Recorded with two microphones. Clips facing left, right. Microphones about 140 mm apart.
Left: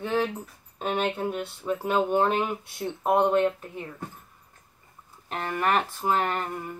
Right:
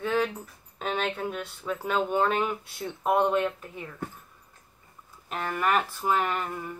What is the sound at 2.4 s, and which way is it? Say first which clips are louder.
Speech: left 1 dB; 25° left (ahead or behind).